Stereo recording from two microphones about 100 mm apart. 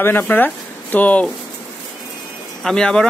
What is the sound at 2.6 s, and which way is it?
Speech, 5° left (ahead or behind).